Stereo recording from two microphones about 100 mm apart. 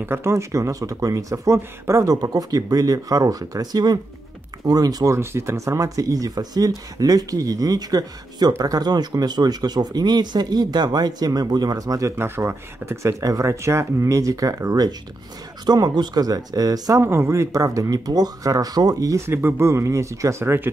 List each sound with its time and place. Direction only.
0.0 s speech: 25° right (ahead or behind)
5.1 s speech: 25° right (ahead or behind)
12.2 s speech: 25° right (ahead or behind)
17.0 s speech: 25° right (ahead or behind)